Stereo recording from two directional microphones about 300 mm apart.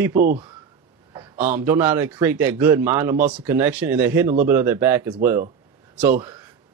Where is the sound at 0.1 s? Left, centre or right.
Right.